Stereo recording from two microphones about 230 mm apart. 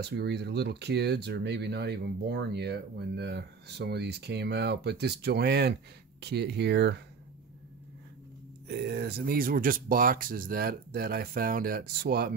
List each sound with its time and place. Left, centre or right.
0.0 s speech: right
8.6 s speech: right